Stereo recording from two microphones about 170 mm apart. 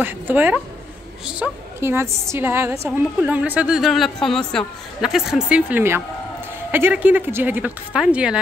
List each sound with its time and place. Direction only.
0.0 s a woman's voice: 10° right (ahead or behind)